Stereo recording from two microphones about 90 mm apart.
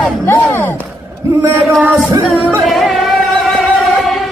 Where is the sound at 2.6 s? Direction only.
Centre (ahead or behind).